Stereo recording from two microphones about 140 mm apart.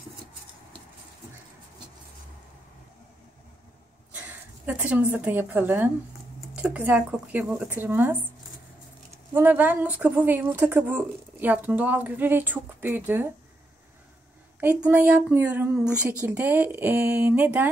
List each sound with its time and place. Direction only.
4.1 s speech: 10° right (ahead or behind)
9.3 s speech: 15° right (ahead or behind)
14.6 s speech: 10° right (ahead or behind)